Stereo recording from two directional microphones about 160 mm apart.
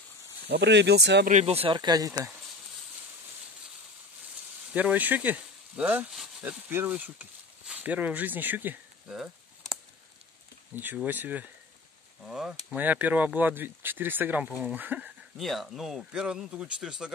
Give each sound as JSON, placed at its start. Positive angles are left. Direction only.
{"t": 0.5, "sound": "speech", "side_deg": -90}
{"t": 1.3, "sound": "speech", "side_deg": -40}
{"t": 4.7, "sound": "speech", "side_deg": -10}
{"t": 10.7, "sound": "speech", "side_deg": -10}
{"t": 15.3, "sound": "speech", "side_deg": 0}